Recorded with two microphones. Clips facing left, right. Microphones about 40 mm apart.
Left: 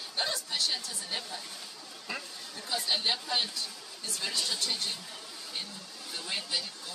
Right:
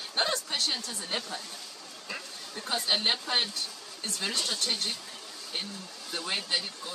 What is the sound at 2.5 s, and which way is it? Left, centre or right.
Speech, right.